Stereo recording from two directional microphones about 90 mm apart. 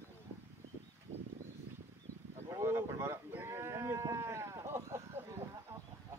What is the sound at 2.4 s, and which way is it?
Sheep, 35° right (ahead or behind).